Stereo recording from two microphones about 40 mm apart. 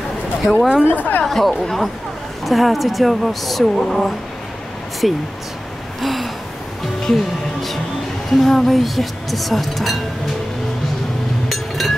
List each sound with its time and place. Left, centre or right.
0.4 s speech: centre
0.8 s speech: left
1.2 s speech: centre
5.9 s gasp: centre
8.3 s speech: centre
11.4 s chink: centre